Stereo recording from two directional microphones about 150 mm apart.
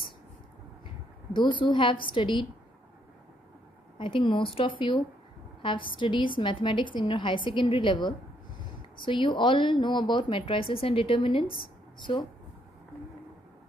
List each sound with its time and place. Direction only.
1.3 s speech: 30° left (ahead or behind)
4.0 s speech: 35° left (ahead or behind)